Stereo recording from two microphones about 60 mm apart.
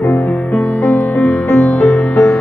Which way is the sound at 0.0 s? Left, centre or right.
Left.